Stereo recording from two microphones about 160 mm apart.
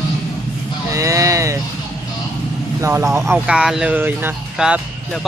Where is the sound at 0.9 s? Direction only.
20° right (ahead or behind).